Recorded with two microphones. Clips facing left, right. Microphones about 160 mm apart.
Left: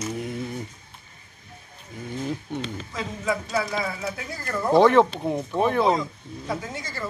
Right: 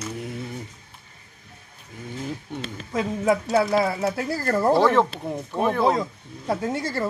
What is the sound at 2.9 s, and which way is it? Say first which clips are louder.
Speech: right 7 dB; 60° right (ahead or behind).